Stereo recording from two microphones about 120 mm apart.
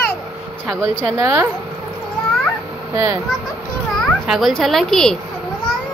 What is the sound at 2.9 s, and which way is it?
Speech, 30° right (ahead or behind).